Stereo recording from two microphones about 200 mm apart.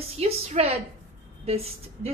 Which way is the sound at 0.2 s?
30° right (ahead or behind).